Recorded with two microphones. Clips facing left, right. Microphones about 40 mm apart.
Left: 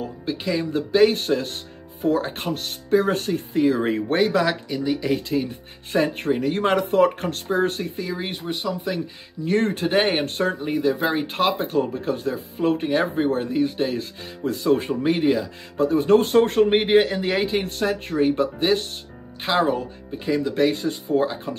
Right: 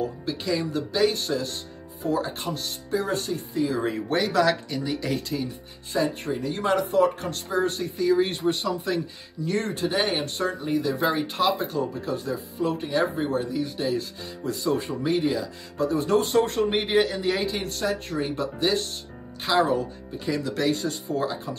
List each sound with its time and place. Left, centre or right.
0.2 s speech: left
4.4 s speech: centre
5.0 s speech: left
5.9 s speech: left
8.1 s speech: centre
9.4 s speech: left
10.6 s speech: left
11.3 s speech: left